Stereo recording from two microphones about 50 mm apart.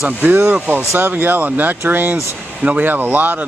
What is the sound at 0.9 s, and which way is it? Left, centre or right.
Speech, right.